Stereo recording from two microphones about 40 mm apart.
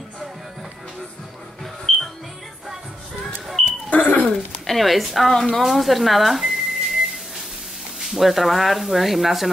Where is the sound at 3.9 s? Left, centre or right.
Left.